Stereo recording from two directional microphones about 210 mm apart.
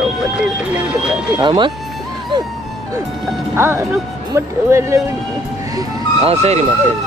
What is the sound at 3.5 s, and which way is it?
Speech, 10° right (ahead or behind).